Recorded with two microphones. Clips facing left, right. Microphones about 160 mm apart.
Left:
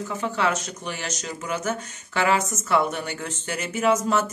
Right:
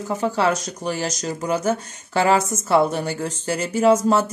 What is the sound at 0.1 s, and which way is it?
Speech, 35° right (ahead or behind).